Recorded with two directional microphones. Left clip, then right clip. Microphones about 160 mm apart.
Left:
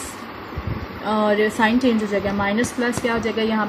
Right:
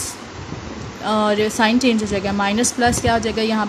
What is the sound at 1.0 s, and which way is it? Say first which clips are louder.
A woman's voice: right 1 dB; 15° right (ahead or behind).